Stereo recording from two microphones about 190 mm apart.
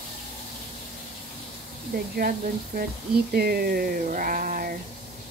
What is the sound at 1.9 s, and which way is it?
Speech, 55° right (ahead or behind).